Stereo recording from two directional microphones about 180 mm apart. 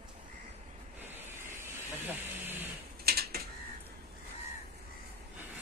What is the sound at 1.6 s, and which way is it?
Hiss, 10° right (ahead or behind).